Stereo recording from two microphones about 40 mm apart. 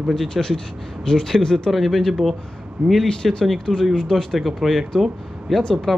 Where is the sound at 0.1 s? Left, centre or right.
Centre.